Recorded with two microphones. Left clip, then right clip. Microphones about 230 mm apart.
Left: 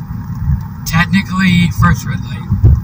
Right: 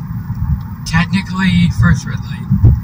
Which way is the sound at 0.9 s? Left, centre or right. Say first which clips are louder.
Left 3 dB; centre.